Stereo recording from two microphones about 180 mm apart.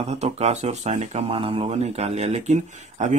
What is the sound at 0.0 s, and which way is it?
Speech, 35° right (ahead or behind).